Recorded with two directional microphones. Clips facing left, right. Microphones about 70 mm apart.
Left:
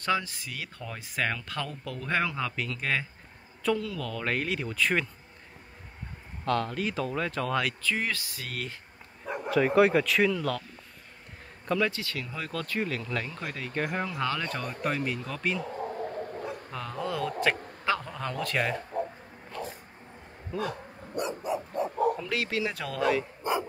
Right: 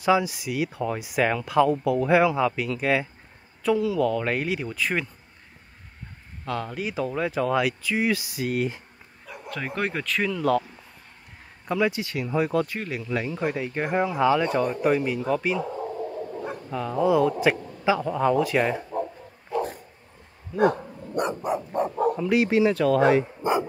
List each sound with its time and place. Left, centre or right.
0.0 s speech: centre
6.4 s speech: centre
9.5 s speech: centre
11.6 s speech: centre
17.0 s a man's voice: centre
19.5 s dog: centre
21.2 s dog: right
22.3 s speech: centre
22.7 s speech: centre
22.9 s speech: right